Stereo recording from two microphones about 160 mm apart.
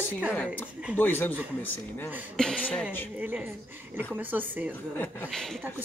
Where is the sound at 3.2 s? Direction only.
10° right (ahead or behind).